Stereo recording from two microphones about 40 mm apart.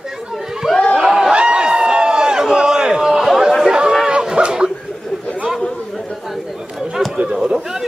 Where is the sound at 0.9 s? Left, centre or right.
Centre.